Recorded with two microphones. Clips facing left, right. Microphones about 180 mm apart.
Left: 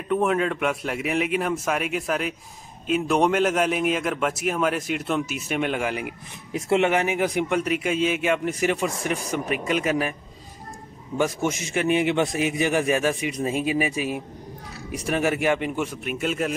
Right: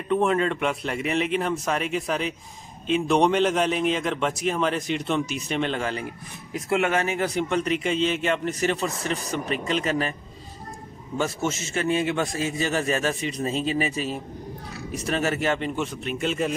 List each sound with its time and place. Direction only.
0.1 s a man's voice: 5° left (ahead or behind)
11.1 s a man's voice: 15° left (ahead or behind)